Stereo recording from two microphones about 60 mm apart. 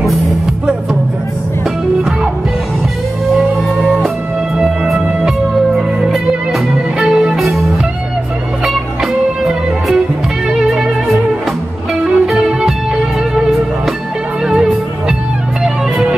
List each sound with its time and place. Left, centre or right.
4.9 s music: centre
5.7 s music: centre
8.6 s music: centre
14.4 s music: centre